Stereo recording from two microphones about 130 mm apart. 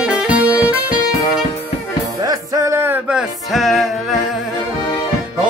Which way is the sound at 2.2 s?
25° right (ahead or behind).